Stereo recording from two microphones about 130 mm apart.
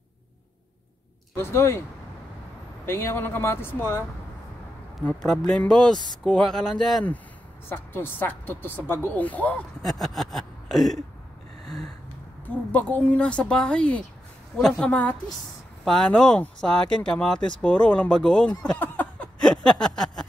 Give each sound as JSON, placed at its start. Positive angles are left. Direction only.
{"t": 1.3, "sound": "speech", "side_deg": 20}
{"t": 2.8, "sound": "speech", "side_deg": 20}
{"t": 5.0, "sound": "speech", "side_deg": 5}
{"t": 7.7, "sound": "speech", "side_deg": 15}
{"t": 12.7, "sound": "speech", "side_deg": 10}
{"t": 18.8, "sound": "a sound", "side_deg": 10}